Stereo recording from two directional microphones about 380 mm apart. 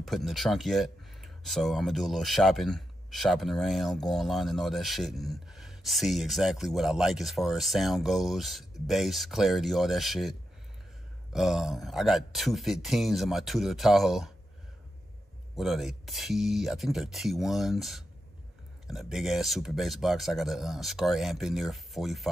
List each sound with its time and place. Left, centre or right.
0.0 s speech: centre
11.3 s speech: centre
15.5 s speech: centre